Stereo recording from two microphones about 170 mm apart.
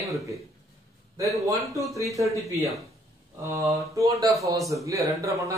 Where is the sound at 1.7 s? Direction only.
20° right (ahead or behind).